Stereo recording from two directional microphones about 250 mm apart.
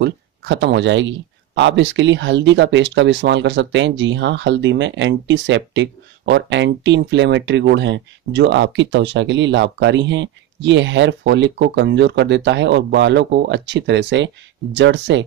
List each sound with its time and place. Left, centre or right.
0.0 s speech: right